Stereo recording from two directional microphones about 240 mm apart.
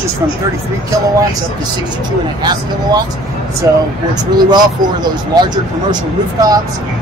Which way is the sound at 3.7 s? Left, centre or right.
Centre.